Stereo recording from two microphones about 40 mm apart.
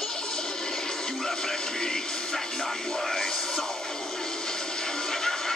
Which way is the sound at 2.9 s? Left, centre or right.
Centre.